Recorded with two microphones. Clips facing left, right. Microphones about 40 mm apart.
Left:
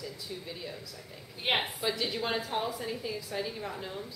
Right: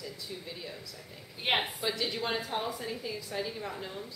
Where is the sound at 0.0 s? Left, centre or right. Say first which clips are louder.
Left 1 dB; centre.